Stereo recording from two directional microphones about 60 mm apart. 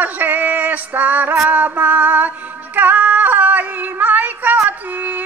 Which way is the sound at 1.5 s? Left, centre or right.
Right.